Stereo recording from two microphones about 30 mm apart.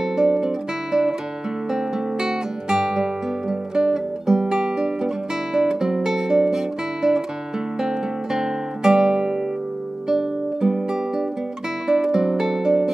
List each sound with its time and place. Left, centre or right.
0.0 s guitar: centre
1.7 s music: centre
7.8 s guitar: centre
10.0 s music: right